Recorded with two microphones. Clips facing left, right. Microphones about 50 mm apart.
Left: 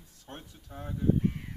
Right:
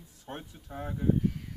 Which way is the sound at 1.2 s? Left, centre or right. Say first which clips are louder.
Even; left.